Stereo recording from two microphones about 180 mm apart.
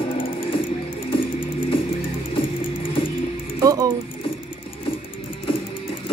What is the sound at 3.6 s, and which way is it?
Music, 20° right (ahead or behind).